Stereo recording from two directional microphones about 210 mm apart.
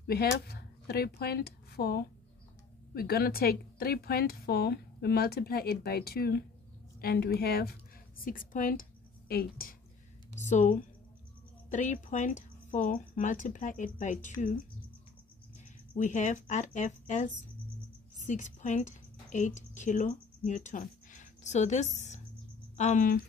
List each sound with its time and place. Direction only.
0.0 s a woman's voice: 50° left (ahead or behind)
10.3 s speech: 35° left (ahead or behind)
16.0 s a woman's voice: 35° left (ahead or behind)